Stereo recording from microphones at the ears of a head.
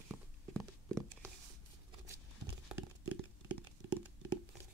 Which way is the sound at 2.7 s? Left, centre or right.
Right.